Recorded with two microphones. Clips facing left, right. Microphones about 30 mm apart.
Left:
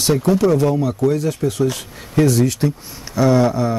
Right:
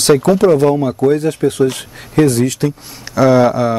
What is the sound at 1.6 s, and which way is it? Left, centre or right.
Speech, right.